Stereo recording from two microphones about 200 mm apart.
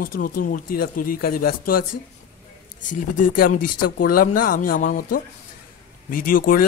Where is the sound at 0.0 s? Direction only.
45° left (ahead or behind).